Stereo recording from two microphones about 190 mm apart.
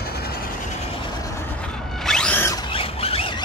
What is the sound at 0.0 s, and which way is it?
Train, 55° left (ahead or behind).